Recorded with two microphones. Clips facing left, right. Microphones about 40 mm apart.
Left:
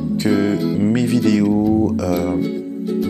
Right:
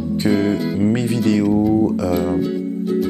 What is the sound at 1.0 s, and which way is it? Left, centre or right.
Speech, left.